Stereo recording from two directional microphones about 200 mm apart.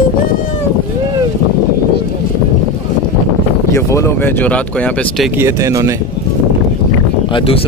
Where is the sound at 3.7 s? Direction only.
15° left (ahead or behind).